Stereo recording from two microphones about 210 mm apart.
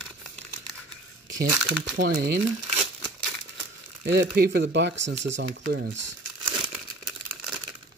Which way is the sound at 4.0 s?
50° right (ahead or behind).